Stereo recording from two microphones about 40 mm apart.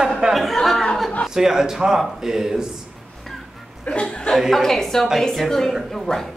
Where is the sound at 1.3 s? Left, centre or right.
Centre.